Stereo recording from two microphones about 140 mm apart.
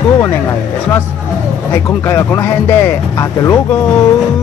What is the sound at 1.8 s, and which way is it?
Speech, 20° left (ahead or behind).